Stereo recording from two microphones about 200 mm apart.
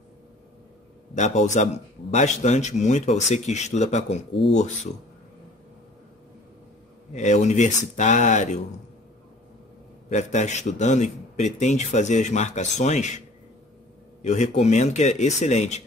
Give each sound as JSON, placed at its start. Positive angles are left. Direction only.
{"t": 1.1, "sound": "a man's voice", "side_deg": 35}
{"t": 7.2, "sound": "a man's voice", "side_deg": 35}
{"t": 10.0, "sound": "a man's voice", "side_deg": 35}
{"t": 14.2, "sound": "a man's voice", "side_deg": 35}